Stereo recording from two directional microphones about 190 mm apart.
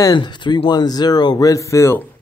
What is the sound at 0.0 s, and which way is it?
A man's voice, 20° left (ahead or behind).